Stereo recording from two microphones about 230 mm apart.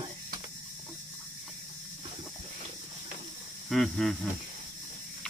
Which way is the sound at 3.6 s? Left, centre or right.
Centre.